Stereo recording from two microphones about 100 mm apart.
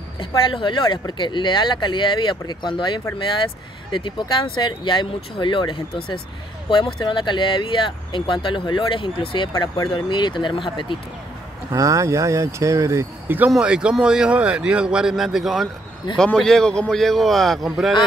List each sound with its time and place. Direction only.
0.5 s speech: 55° left (ahead or behind)
9.5 s speech: 35° left (ahead or behind)
9.8 s speech: 50° left (ahead or behind)
11.7 s speech: 35° right (ahead or behind)
13.5 s a man's voice: 10° right (ahead or behind)